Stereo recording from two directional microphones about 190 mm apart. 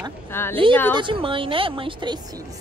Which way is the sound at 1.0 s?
25° right (ahead or behind).